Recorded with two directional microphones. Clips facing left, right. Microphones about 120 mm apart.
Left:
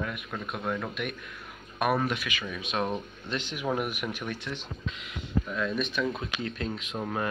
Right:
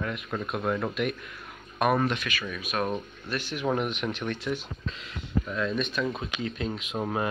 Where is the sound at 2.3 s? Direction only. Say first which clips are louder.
Right 1 dB; 20° left (ahead or behind).